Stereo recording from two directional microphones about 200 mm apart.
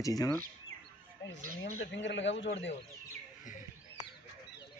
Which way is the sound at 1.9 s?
65° left (ahead or behind).